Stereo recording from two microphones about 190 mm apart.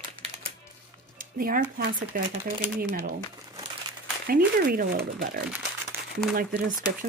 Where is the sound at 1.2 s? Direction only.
50° right (ahead or behind).